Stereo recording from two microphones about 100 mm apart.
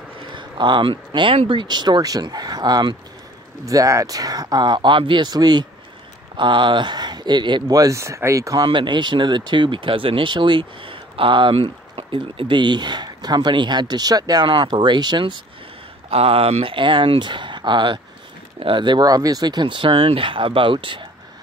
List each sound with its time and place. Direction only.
0.3 s speech: 50° right (ahead or behind)
3.6 s speech: 35° right (ahead or behind); by 7.7 s 50° right (ahead or behind)
7.7 s speech: 35° right (ahead or behind)
8.6 s speech: 50° right (ahead or behind)
16.1 s speech: 75° right (ahead or behind); by 21.1 s 55° right (ahead or behind)